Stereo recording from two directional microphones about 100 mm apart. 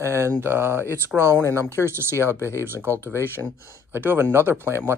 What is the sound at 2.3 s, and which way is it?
Speech, 25° left (ahead or behind).